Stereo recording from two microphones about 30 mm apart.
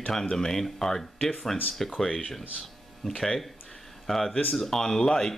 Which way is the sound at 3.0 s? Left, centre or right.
Centre.